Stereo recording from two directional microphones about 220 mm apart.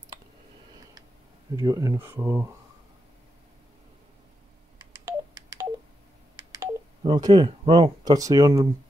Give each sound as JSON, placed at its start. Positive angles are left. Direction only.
{"t": 1.6, "sound": "speech", "side_deg": -15}
{"t": 4.9, "sound": "telephone dialing", "side_deg": -15}
{"t": 6.3, "sound": "speech", "side_deg": -15}